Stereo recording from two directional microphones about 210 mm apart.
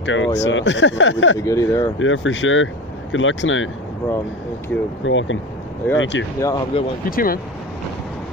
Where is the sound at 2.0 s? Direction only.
65° left (ahead or behind).